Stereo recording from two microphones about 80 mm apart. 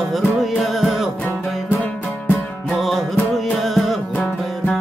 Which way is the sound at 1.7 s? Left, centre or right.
Centre.